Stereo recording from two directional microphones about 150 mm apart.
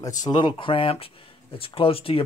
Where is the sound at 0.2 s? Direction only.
30° left (ahead or behind).